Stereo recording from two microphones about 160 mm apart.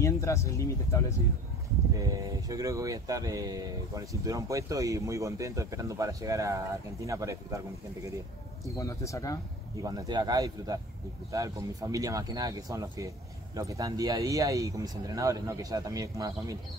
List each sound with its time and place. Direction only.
0.0 s speech: 20° left (ahead or behind)
2.0 s speech: 20° right (ahead or behind)
8.6 s speech: 20° left (ahead or behind)
9.8 s speech: 25° right (ahead or behind)